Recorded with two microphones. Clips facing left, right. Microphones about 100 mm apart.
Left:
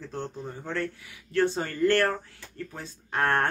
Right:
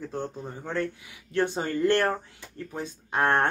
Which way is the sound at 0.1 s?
15° right (ahead or behind).